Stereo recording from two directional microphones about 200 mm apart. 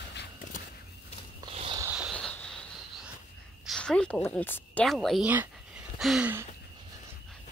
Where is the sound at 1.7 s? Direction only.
10° right (ahead or behind).